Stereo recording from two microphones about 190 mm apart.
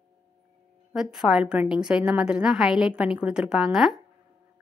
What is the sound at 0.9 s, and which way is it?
A woman's voice, centre (ahead or behind).